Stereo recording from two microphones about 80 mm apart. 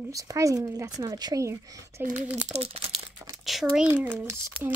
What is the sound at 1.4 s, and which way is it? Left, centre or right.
Speech, right.